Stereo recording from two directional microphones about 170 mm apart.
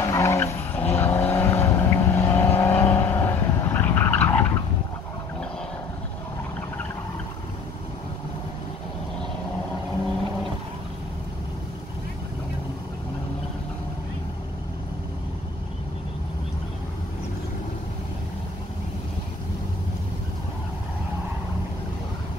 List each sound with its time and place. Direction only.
0.0 s vehicle: 20° left (ahead or behind)